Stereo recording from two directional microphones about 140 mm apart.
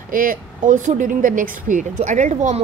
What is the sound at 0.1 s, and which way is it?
A woman's voice, 80° right.